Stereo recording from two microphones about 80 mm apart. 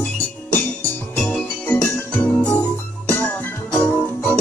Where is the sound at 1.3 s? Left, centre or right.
Left.